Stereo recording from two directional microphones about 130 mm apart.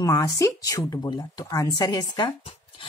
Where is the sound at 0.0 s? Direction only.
25° left (ahead or behind).